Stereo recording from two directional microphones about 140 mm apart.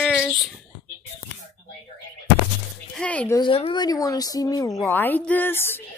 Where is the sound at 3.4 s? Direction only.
40° left (ahead or behind).